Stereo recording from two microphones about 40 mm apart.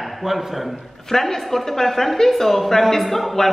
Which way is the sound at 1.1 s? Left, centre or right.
Centre.